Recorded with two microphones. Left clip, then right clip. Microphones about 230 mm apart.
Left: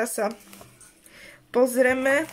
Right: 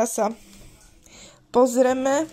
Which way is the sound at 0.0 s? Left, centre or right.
Centre.